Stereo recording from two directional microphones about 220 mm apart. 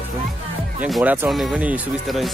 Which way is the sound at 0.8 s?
5° right (ahead or behind).